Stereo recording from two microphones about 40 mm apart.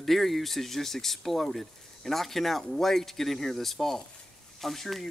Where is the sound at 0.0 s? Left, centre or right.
Centre.